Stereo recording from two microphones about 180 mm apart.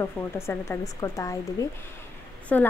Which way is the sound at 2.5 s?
10° left (ahead or behind).